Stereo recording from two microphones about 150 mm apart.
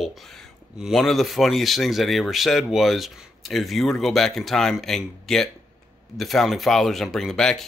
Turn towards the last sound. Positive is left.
turn(degrees=5)  # may be behind; listen again after turning